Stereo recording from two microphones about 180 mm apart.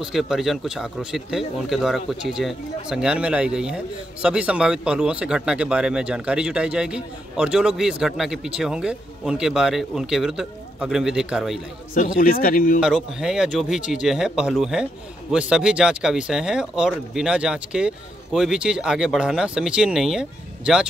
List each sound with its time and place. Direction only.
0.0 s speech: centre (ahead or behind)
11.9 s speech: 50° left (ahead or behind)
12.8 s speech: 5° right (ahead or behind)